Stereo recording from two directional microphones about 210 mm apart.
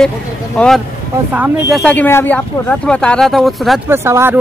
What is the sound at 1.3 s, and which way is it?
Speech, 10° right (ahead or behind).